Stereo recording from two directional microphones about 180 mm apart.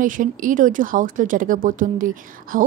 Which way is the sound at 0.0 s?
50° right (ahead or behind).